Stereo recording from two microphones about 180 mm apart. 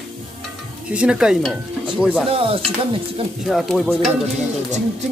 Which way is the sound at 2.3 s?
35° right (ahead or behind).